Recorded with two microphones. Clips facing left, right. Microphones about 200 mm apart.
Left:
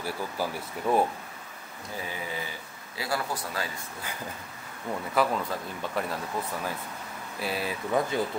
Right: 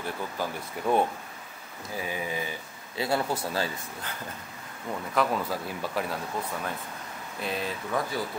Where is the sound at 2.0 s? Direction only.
15° right (ahead or behind).